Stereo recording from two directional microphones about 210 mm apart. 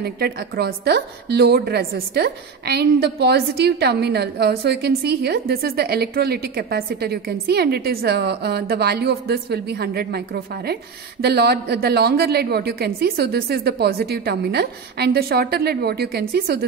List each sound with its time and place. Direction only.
0.0 s a woman's voice: 50° right (ahead or behind)